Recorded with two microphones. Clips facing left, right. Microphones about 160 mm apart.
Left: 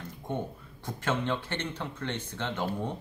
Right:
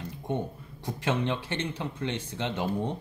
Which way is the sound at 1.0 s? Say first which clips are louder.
Right 1 dB; 15° right (ahead or behind).